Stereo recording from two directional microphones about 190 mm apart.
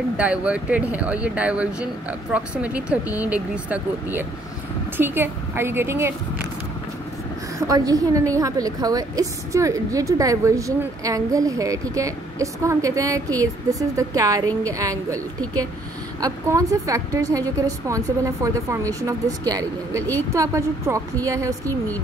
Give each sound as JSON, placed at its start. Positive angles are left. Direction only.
{"t": 0.2, "sound": "a woman's voice", "side_deg": -5}
{"t": 7.5, "sound": "a woman's voice", "side_deg": -20}